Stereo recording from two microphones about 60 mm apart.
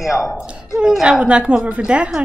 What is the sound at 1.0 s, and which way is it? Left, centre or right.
A woman's voice, centre.